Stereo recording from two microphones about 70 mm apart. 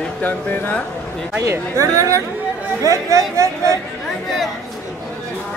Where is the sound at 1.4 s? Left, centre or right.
Right.